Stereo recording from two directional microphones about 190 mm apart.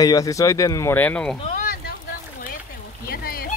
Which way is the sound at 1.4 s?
45° left (ahead or behind).